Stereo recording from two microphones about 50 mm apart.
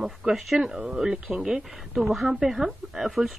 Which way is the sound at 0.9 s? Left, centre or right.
Centre.